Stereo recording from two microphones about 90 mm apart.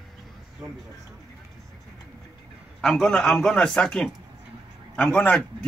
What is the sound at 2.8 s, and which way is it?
A man's voice, 5° left (ahead or behind).